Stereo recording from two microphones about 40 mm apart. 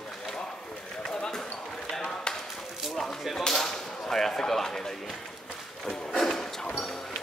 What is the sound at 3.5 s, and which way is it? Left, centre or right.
Whip, centre.